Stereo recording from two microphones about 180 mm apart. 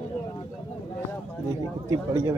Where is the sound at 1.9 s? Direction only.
20° right (ahead or behind).